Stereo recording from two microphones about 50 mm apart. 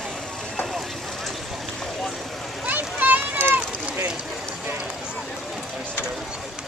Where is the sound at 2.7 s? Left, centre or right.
Right.